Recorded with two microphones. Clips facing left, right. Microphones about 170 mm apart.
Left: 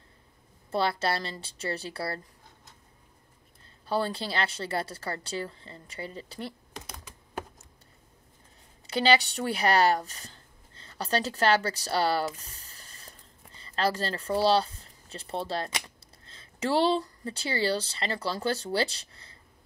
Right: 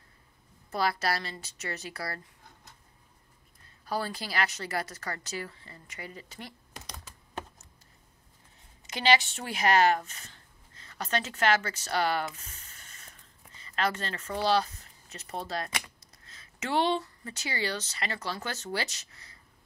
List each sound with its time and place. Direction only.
0.7 s a woman's voice: 30° left (ahead or behind)
3.8 s a woman's voice: 30° left (ahead or behind)
8.8 s speech: 35° left (ahead or behind)